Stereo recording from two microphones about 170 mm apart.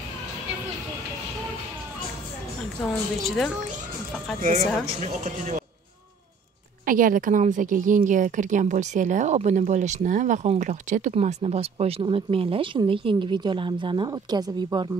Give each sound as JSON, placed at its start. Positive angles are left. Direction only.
{"t": 3.3, "sound": "a child's voice", "side_deg": 0}
{"t": 4.4, "sound": "a woman's voice", "side_deg": -45}
{"t": 6.9, "sound": "a woman's voice", "side_deg": -55}